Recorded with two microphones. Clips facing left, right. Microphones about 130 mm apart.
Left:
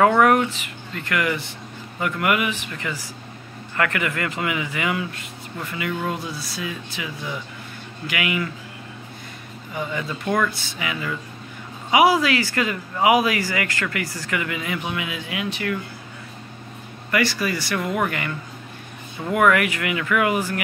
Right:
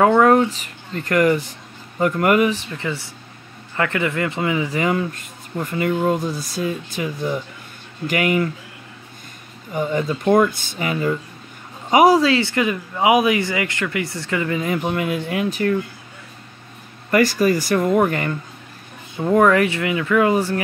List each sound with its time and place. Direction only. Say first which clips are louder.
0.0 s a sound: right 3 dB; 25° right (ahead or behind)
0.5 s speech: right 3 dB; 40° right (ahead or behind)
9.8 s speech: right 7 dB; 40° right (ahead or behind)
12.3 s speech: right 4 dB; 25° right (ahead or behind)
17.1 s speech: right 7 dB; 45° right (ahead or behind)
19.3 s speech: right 3 dB; 30° right (ahead or behind)